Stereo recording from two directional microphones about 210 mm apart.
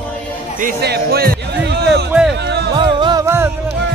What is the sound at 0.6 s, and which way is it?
Speech, 45° right (ahead or behind).